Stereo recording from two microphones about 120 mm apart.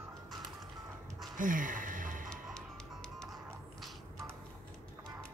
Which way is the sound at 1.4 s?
90° right.